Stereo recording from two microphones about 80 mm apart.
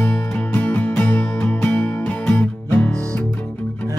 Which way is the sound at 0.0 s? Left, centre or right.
Left.